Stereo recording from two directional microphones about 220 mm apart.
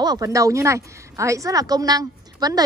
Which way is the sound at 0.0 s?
15° right (ahead or behind).